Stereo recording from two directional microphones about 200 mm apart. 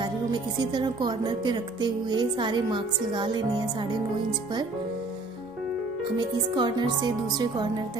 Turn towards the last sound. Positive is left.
turn(degrees=-20)  # may be behind; listen again after turning